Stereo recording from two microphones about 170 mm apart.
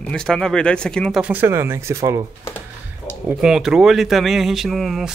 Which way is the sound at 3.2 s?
5° right (ahead or behind).